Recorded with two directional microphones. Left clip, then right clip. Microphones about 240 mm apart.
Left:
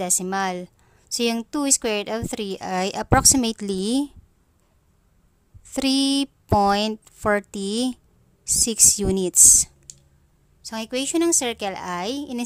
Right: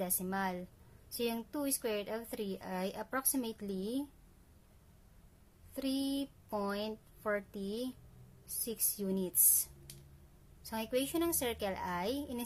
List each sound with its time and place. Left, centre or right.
0.0 s a woman's voice: left
5.7 s a woman's voice: left
10.6 s a woman's voice: left